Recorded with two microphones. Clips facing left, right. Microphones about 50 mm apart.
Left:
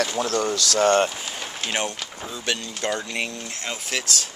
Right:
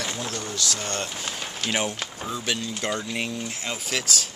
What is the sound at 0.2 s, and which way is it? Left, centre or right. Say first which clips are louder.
Speech: left 9 dB; left.